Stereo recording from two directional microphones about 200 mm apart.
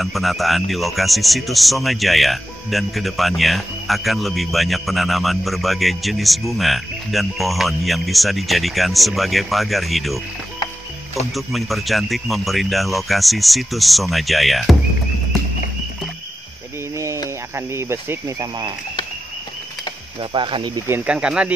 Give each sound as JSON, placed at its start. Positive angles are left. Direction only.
{"t": 0.0, "sound": "speech", "side_deg": 0}
{"t": 11.3, "sound": "speech", "side_deg": 0}
{"t": 16.9, "sound": "cricket", "side_deg": -15}
{"t": 17.6, "sound": "speech", "side_deg": -15}
{"t": 20.2, "sound": "speech", "side_deg": -25}
{"t": 20.8, "sound": "speech", "side_deg": -10}